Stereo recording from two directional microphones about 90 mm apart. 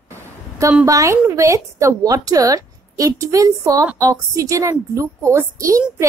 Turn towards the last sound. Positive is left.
turn(degrees=-35)  # may be behind; listen again after turning